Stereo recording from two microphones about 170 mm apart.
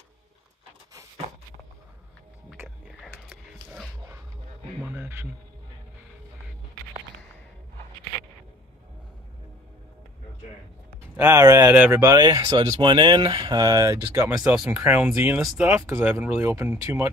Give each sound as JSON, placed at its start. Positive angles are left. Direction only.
{"t": 3.0, "sound": "a sound", "side_deg": 0}
{"t": 4.8, "sound": "music", "side_deg": -10}
{"t": 11.1, "sound": "speech", "side_deg": -15}
{"t": 14.0, "sound": "speech", "side_deg": -10}
{"t": 16.0, "sound": "speech", "side_deg": -5}